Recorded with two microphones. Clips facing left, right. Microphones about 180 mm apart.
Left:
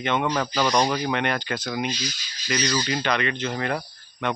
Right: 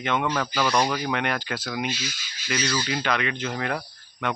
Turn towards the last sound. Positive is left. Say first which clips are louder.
# left 2 dB
turn(degrees=-5)  # may be behind; listen again after turning